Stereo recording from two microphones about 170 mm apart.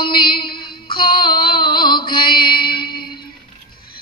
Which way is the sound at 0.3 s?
65° left (ahead or behind).